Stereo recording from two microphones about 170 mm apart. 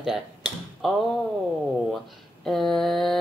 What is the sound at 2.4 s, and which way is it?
Speech, centre (ahead or behind).